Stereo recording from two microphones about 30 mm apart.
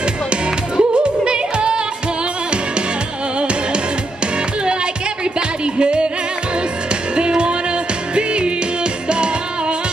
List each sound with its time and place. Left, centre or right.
0.3 s music: right
3.3 s music: right
5.8 s music: right
7.2 s music: right